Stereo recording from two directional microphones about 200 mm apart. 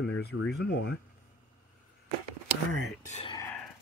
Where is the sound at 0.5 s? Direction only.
55° left (ahead or behind).